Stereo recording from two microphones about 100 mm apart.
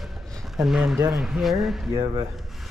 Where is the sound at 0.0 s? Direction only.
5° left (ahead or behind).